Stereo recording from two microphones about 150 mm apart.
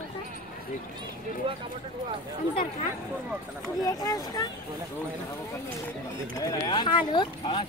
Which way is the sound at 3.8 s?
25° left (ahead or behind).